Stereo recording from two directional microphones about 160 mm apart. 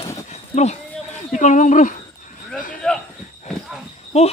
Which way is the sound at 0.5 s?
45° left (ahead or behind).